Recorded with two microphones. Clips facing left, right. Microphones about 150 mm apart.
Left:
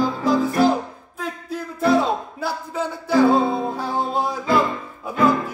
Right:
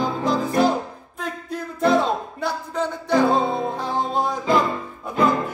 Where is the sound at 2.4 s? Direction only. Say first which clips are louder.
Right 1 dB; 5° left (ahead or behind).